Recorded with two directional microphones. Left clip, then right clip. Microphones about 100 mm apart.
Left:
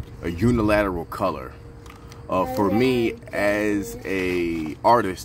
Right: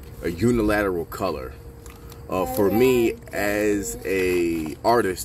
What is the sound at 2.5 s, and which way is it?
Speech, centre (ahead or behind).